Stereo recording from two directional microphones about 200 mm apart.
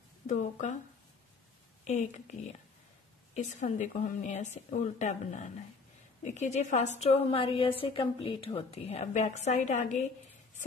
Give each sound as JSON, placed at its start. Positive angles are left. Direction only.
{"t": 0.3, "sound": "speech", "side_deg": 35}
{"t": 1.9, "sound": "speech", "side_deg": 35}
{"t": 3.3, "sound": "a woman's voice", "side_deg": 35}